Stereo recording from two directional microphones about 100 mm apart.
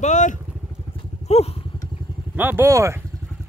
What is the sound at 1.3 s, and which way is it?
Speech, 90° left.